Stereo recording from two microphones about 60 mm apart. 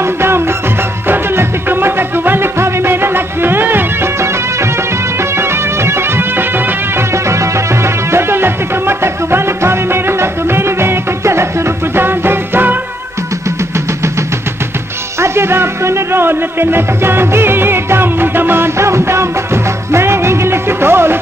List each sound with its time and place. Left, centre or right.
0.0 s music: right
5.3 s music: right
7.2 s music: right
15.1 s music: right